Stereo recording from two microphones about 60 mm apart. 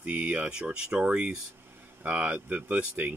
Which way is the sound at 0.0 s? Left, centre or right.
Right.